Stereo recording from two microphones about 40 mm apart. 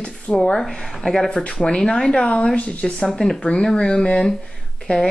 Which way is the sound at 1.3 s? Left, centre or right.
Left.